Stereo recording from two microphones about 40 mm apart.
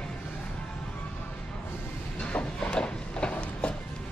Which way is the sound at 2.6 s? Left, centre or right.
Left.